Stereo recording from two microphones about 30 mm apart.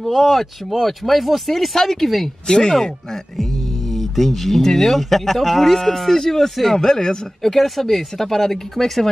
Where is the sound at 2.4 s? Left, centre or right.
Left.